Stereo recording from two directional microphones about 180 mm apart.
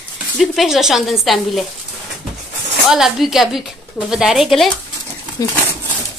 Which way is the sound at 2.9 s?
Centre (ahead or behind).